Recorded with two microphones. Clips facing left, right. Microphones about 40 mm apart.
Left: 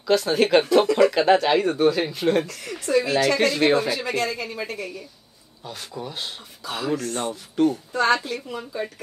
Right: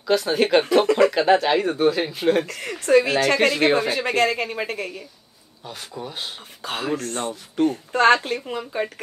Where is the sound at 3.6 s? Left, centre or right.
Right.